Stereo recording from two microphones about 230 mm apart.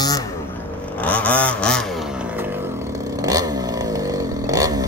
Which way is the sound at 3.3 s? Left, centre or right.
Centre.